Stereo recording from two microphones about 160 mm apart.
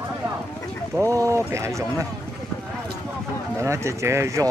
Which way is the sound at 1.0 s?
20° right (ahead or behind).